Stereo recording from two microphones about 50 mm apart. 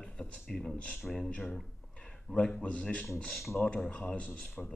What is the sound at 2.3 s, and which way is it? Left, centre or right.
Speech, left.